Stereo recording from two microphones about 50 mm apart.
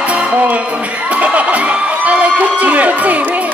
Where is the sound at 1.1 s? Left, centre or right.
Right.